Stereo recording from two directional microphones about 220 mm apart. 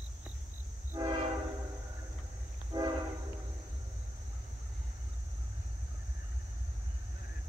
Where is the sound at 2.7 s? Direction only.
20° right (ahead or behind).